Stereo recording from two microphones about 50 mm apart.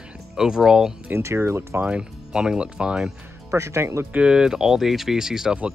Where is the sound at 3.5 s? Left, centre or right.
Right.